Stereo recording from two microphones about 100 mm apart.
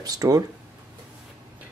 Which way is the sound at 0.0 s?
40° right (ahead or behind).